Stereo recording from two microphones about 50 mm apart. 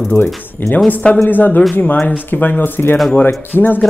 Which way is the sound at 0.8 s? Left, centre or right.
Left.